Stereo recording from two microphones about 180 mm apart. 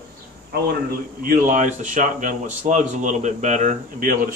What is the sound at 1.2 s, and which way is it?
Speech, 45° right (ahead or behind).